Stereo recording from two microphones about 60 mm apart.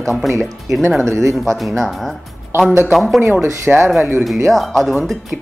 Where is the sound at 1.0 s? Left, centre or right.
Right.